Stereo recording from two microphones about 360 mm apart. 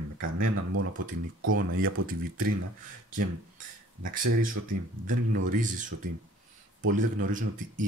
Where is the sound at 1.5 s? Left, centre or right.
Right.